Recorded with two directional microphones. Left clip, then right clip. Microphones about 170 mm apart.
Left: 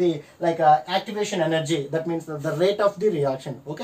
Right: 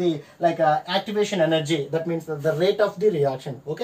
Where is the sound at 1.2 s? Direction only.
5° left (ahead or behind).